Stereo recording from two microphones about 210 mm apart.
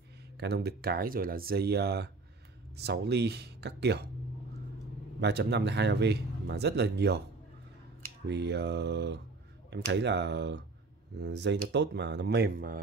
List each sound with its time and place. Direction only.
0.4 s speech: 50° right (ahead or behind)
5.2 s speech: 55° right (ahead or behind)
8.3 s speech: 55° right (ahead or behind)